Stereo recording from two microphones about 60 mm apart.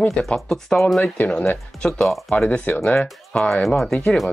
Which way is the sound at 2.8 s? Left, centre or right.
Centre.